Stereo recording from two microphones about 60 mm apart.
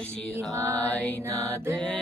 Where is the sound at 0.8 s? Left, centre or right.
Left.